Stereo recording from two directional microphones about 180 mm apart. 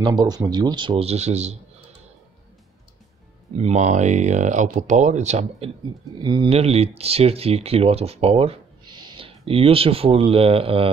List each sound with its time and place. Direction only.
0.0 s speech: 25° right (ahead or behind)
3.5 s speech: 40° right (ahead or behind)
6.1 s speech: 25° right (ahead or behind)